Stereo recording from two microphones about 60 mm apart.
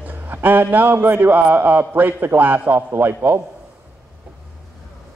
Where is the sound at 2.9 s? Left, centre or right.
Right.